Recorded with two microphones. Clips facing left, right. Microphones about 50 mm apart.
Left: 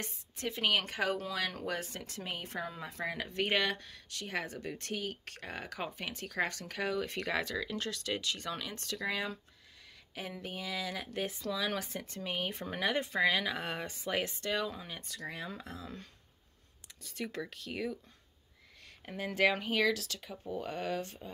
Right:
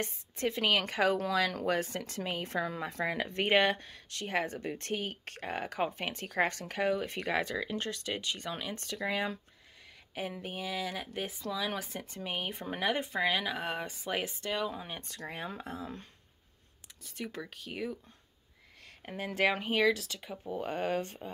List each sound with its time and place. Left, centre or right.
0.0 s speech: right
10.1 s speech: right
11.1 s speech: centre
14.9 s speech: right
17.0 s speech: centre
18.9 s speech: right